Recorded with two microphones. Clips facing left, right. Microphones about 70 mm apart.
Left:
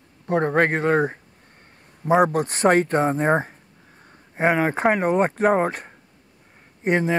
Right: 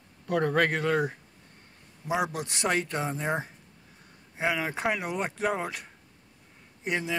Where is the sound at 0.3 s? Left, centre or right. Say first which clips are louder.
Left 5 dB; left.